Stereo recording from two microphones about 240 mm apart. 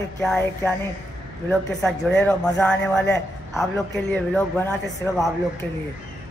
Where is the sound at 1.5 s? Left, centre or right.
Centre.